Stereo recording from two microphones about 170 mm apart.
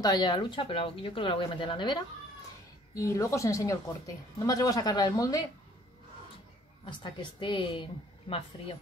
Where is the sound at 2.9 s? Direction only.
20° left (ahead or behind).